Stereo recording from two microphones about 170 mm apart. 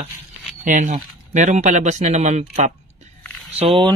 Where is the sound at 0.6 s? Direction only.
50° right (ahead or behind).